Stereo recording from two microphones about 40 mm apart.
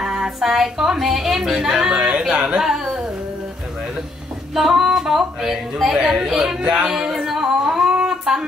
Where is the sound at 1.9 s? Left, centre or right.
Right.